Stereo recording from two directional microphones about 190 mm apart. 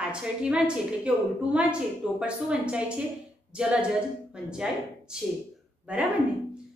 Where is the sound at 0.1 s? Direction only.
5° right (ahead or behind).